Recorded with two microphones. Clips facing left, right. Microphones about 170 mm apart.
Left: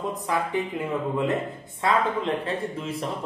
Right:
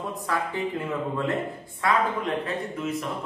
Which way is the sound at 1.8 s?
25° left (ahead or behind).